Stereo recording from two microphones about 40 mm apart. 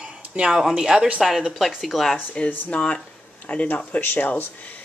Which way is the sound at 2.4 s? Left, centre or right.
Left.